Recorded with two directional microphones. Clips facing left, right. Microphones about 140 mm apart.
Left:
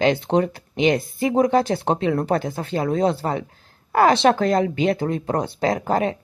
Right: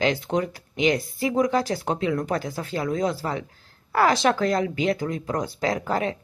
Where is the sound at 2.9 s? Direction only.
30° left (ahead or behind).